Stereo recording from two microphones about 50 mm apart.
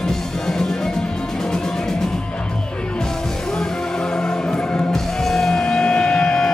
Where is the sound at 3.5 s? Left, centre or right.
Centre.